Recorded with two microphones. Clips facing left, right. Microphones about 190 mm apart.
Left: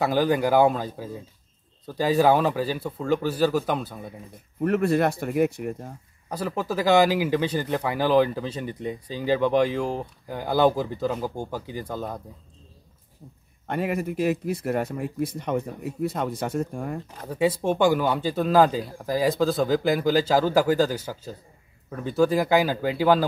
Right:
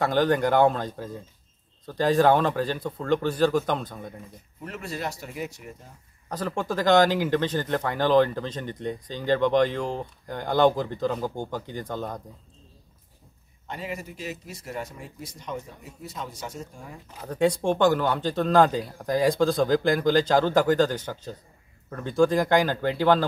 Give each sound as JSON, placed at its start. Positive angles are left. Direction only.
{"t": 0.0, "sound": "speech", "side_deg": 10}
{"t": 4.6, "sound": "speech", "side_deg": 55}
{"t": 6.2, "sound": "speech", "side_deg": 10}
{"t": 13.7, "sound": "speech", "side_deg": 60}
{"t": 17.3, "sound": "speech", "side_deg": 5}